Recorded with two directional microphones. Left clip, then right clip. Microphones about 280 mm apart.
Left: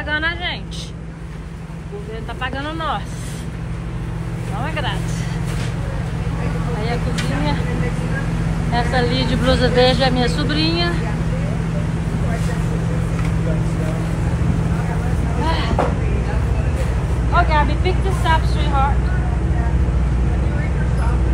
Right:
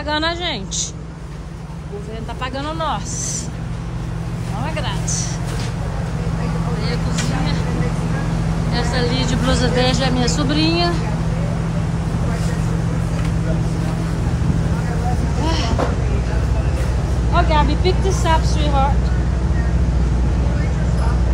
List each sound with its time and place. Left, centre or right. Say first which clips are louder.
0.1 s a woman's voice: right 1 dB; centre
2.4 s a woman's voice: right 1 dB; centre
8.7 s a woman's voice: left 3 dB; centre
15.4 s vehicle: left 1 dB; centre
17.3 s a woman's voice: even; centre